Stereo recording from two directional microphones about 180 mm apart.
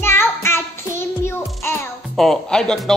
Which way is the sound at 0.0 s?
15° left (ahead or behind).